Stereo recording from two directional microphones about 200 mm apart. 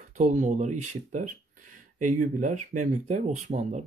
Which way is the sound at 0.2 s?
40° right (ahead or behind).